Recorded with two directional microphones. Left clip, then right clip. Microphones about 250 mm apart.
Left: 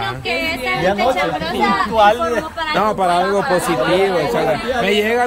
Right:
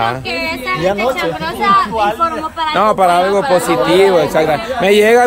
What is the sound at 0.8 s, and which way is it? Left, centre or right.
Speech, right.